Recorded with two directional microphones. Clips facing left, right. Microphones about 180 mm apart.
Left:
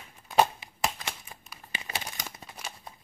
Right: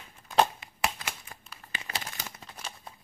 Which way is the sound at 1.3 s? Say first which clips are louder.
Left 1 dB; 15° left (ahead or behind).